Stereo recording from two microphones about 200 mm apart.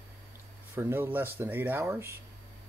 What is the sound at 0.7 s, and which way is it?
Speech, 10° right (ahead or behind).